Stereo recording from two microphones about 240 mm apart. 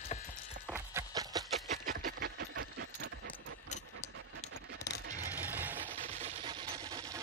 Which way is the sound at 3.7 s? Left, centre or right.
Left.